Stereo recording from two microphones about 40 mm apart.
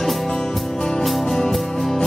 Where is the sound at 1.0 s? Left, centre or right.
Centre.